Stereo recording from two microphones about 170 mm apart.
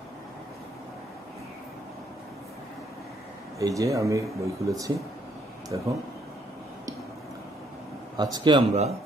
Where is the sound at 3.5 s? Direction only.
20° right (ahead or behind).